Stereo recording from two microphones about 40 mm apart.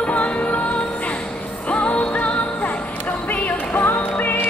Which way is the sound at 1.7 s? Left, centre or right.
Left.